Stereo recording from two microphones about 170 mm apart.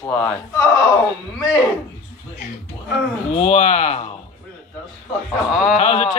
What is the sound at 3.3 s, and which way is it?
Speech, 40° left (ahead or behind).